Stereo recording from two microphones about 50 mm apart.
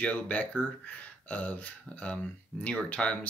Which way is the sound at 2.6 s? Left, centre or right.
Left.